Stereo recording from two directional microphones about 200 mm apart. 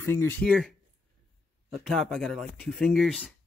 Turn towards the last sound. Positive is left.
turn(degrees=0)  # may be behind; listen again after turning